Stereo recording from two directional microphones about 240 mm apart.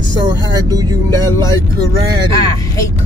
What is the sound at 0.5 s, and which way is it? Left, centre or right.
Speech, centre.